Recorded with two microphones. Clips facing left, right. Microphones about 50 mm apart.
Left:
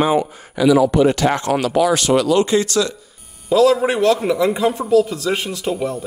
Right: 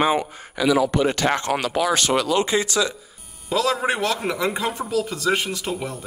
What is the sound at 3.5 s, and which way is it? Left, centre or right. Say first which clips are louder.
Speech: left 7 dB; centre.